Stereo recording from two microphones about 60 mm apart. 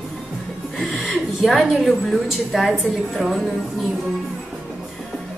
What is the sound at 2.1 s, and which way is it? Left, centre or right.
A woman's voice, centre.